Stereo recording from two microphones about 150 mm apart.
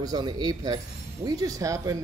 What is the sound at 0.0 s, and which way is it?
Speech, 25° right (ahead or behind).